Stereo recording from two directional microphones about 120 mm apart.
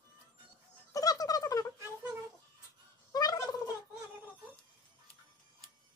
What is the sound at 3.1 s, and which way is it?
Fowl, 30° left (ahead or behind).